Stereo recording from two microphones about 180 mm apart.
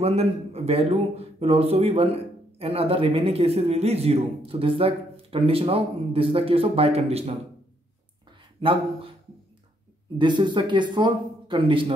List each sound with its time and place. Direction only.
0.0 s a man's voice: 35° right (ahead or behind)
8.5 s speech: 30° right (ahead or behind)
10.1 s speech: 25° right (ahead or behind)